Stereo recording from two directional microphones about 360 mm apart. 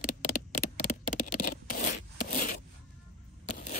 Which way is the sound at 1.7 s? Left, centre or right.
Left.